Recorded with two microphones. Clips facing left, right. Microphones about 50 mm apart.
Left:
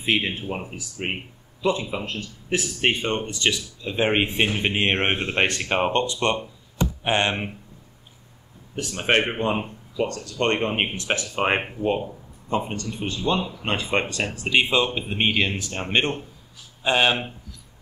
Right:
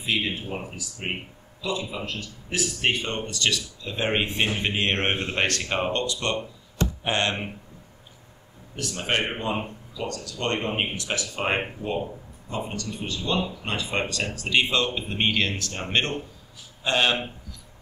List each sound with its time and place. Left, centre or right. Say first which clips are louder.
0.0 s speech: left 3 dB; left
1.6 s speech: left 5 dB; left
8.7 s speech: left 5 dB; left